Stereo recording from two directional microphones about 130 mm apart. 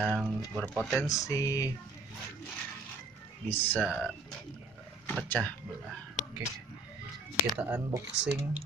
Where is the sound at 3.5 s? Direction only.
15° left (ahead or behind).